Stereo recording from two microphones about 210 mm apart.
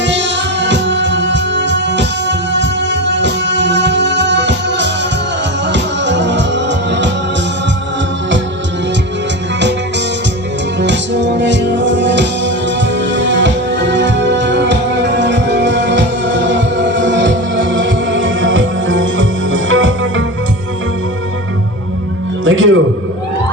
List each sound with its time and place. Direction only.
0.0 s music: 55° right (ahead or behind)
10.8 s music: 55° right (ahead or behind)
22.4 s music: 65° right (ahead or behind)